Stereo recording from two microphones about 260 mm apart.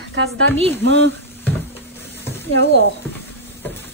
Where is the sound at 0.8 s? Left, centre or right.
Right.